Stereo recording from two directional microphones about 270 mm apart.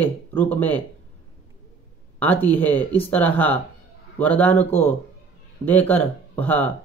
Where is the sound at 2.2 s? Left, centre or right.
Centre.